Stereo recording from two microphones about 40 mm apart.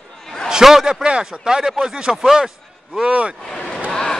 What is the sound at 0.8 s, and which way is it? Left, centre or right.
Speech, right.